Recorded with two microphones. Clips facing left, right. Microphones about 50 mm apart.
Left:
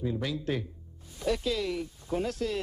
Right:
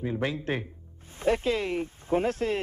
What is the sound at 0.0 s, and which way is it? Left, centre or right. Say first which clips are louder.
Speech: right 2 dB; right.